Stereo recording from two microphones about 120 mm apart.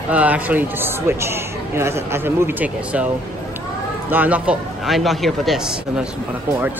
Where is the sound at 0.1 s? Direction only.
10° right (ahead or behind).